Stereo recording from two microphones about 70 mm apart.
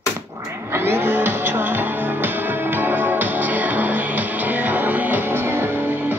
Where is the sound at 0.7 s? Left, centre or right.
Right.